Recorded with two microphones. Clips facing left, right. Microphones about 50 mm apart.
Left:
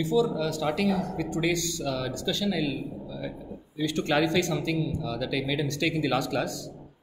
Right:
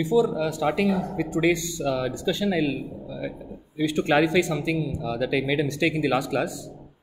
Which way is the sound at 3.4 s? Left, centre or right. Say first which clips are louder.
Right 5 dB; centre.